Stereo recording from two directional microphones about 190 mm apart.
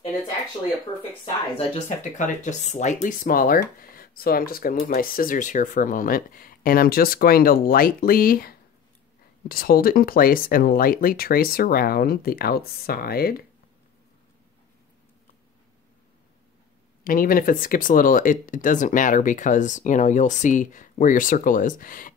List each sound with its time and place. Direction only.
2.1 s speech: 40° left (ahead or behind)
17.0 s speech: 45° left (ahead or behind)